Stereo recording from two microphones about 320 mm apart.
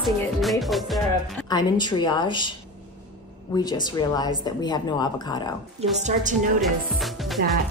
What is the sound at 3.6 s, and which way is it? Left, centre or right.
Speech, centre.